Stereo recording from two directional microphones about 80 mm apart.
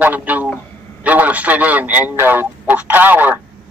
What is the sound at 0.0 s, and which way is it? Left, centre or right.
A man's voice, right.